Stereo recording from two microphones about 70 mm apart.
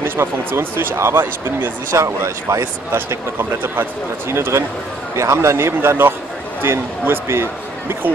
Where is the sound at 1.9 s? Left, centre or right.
Right.